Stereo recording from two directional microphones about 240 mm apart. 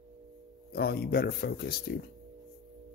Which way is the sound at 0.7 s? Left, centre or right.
Left.